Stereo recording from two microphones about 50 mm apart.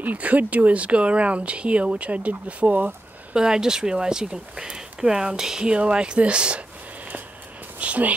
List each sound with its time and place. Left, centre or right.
0.0 s speech: right
3.3 s speech: centre
7.8 s speech: right